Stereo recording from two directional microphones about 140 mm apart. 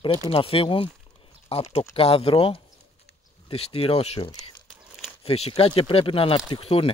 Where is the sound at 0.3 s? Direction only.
40° left (ahead or behind).